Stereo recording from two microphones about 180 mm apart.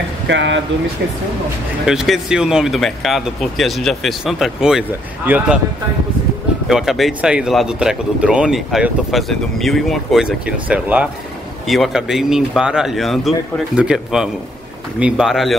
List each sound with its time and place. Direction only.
0.3 s speech: 90° right
1.9 s speech: centre (ahead or behind)
6.7 s speech: centre (ahead or behind)